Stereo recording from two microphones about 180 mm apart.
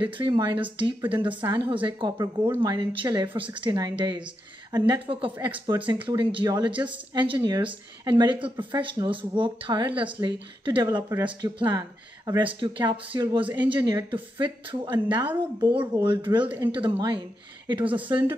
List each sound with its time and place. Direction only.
0.0 s speech: 25° right (ahead or behind)
16.4 s speech: 15° right (ahead or behind)
17.6 s speech: 25° right (ahead or behind)